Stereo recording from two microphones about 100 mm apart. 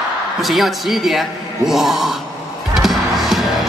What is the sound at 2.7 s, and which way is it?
Music, 5° right (ahead or behind).